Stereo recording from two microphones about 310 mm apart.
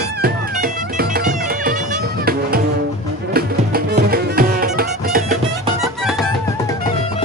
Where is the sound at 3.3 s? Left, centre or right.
Right.